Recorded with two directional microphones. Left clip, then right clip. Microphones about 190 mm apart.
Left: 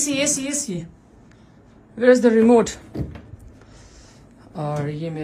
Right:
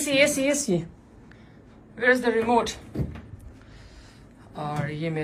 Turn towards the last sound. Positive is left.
turn(degrees=45)  # may be behind; listen again after turning